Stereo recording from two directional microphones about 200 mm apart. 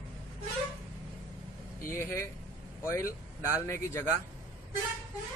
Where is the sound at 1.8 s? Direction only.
15° left (ahead or behind).